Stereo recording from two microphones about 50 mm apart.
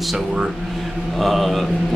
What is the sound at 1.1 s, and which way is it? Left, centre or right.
Speech, centre.